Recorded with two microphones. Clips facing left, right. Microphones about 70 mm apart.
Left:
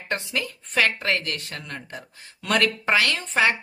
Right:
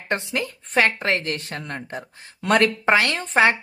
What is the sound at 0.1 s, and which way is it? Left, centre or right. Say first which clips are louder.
A woman's voice: right 3 dB; right.